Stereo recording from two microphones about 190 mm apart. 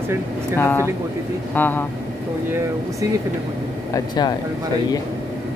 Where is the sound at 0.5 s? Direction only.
10° left (ahead or behind).